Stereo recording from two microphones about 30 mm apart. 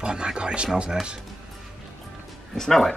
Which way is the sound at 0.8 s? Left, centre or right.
Right.